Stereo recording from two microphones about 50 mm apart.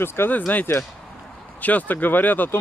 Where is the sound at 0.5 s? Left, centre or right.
Left.